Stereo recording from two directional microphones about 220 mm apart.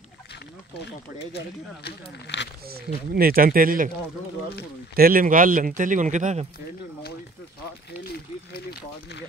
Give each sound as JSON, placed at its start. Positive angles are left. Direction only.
{"t": 0.7, "sound": "speech", "side_deg": 50}
{"t": 2.7, "sound": "speech", "side_deg": -45}
{"t": 4.9, "sound": "speech", "side_deg": -40}
{"t": 8.5, "sound": "speech", "side_deg": 45}